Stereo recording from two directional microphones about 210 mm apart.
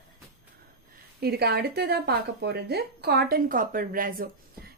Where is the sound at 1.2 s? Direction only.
50° right (ahead or behind).